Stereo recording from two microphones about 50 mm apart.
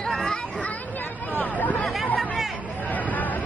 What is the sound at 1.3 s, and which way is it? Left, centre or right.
Hubbub, left.